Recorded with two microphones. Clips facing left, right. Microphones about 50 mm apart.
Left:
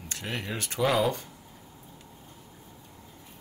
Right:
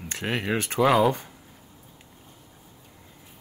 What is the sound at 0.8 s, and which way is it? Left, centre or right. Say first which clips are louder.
Speech: right 5 dB; right.